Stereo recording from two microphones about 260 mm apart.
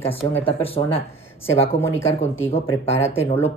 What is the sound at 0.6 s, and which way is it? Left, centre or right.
Speech, left.